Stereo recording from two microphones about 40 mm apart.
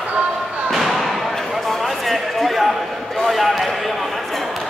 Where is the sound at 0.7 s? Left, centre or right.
Centre.